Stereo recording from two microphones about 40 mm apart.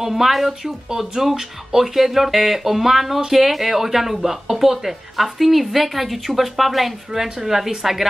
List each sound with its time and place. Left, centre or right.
0.0 s speech: centre